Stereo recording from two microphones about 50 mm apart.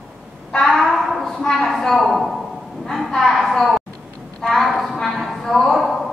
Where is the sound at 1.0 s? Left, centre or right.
Centre.